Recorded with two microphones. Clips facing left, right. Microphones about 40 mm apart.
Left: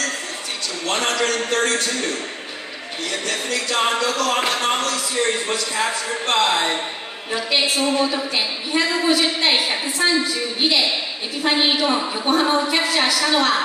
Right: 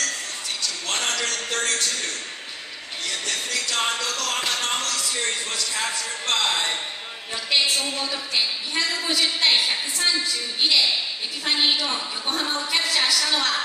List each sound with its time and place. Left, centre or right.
0.8 s a woman's voice: centre
7.8 s a woman's voice: centre
12.3 s a sound: centre
12.6 s a woman's voice: centre